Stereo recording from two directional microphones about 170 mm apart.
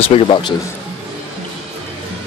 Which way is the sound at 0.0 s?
30° left (ahead or behind).